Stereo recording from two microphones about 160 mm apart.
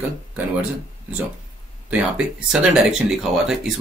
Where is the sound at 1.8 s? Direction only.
5° right (ahead or behind).